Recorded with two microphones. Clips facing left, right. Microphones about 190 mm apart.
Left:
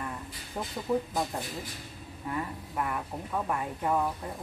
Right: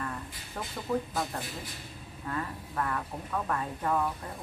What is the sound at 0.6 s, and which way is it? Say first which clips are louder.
Speech: left 3 dB; 20° left (ahead or behind).